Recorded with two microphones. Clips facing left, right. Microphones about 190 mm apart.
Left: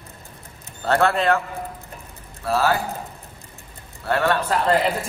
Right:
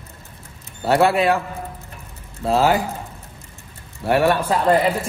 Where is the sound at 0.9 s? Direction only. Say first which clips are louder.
Right 3 dB; 10° right (ahead or behind).